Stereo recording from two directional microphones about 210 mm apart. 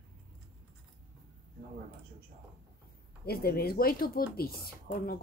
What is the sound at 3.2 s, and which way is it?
Speech, 45° left (ahead or behind).